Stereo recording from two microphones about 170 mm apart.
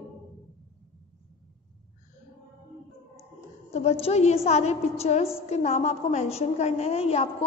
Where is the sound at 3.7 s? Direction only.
40° left (ahead or behind).